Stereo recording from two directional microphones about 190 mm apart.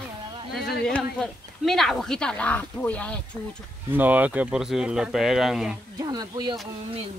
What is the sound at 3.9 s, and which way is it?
Speech, 10° right (ahead or behind).